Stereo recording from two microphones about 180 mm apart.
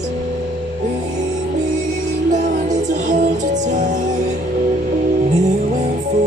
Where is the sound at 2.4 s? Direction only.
45° right (ahead or behind).